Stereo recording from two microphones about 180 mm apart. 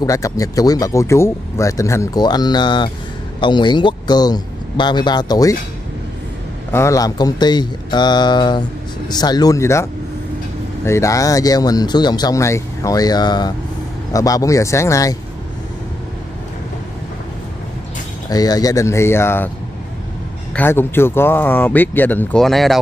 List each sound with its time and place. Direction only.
0.0 s speech: 20° left (ahead or behind)
6.7 s speech: 15° left (ahead or behind)
10.9 s speech: 15° left (ahead or behind)
18.3 s speech: 20° left (ahead or behind)
20.5 s speech: 10° left (ahead or behind)